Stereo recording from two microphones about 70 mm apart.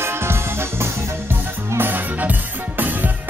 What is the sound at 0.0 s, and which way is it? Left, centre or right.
Music, right.